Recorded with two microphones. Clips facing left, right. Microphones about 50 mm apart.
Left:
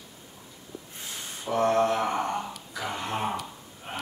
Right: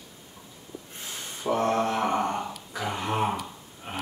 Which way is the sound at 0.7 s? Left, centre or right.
Centre.